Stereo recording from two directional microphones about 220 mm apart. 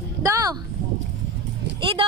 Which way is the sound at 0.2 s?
15° right (ahead or behind).